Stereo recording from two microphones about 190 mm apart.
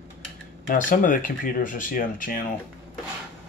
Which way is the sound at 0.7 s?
45° left (ahead or behind).